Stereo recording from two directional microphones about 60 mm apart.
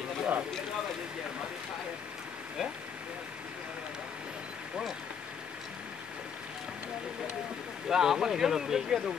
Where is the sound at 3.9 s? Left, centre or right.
Centre.